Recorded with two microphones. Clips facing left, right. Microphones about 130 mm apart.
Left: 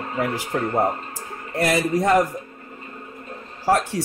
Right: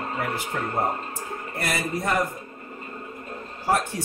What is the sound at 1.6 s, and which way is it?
Speech, 90° left.